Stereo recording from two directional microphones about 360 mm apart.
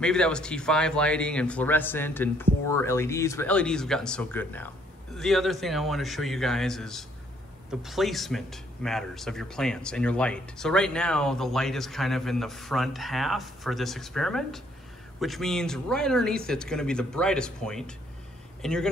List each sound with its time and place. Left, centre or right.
0.0 s speech: centre